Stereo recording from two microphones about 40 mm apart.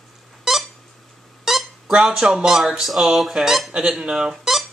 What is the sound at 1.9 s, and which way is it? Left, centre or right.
Speech, centre.